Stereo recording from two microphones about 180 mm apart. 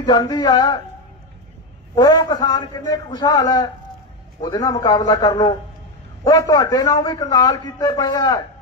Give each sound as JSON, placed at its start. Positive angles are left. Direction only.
{"t": 0.0, "sound": "a man's voice", "side_deg": 25}
{"t": 2.0, "sound": "a man's voice", "side_deg": 20}